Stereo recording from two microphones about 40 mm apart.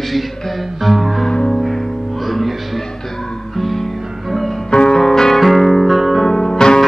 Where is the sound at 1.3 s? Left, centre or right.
Centre.